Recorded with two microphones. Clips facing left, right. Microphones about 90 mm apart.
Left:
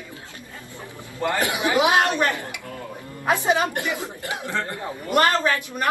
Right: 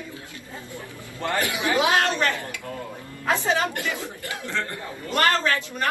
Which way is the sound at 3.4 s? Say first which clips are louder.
Left 2 dB; 15° left (ahead or behind).